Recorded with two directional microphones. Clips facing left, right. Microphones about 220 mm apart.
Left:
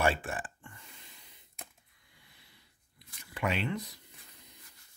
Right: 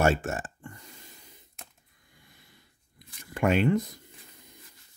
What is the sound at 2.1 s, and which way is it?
Snort, 45° right (ahead or behind).